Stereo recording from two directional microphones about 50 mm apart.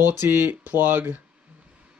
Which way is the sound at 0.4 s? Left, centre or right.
Right.